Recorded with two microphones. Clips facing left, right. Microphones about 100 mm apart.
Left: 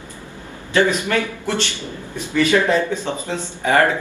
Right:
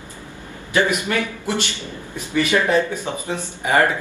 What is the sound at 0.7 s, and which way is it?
Speech, 15° right (ahead or behind).